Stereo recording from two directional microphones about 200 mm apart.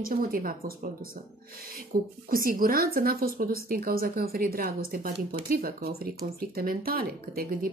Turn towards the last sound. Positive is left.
turn(degrees=-45)  # may be behind; listen again after turning